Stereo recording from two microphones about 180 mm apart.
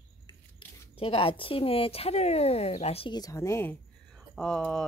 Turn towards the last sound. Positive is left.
turn(degrees=5)  # may be behind; listen again after turning